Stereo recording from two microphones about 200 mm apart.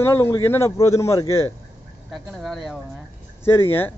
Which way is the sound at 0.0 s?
15° left (ahead or behind).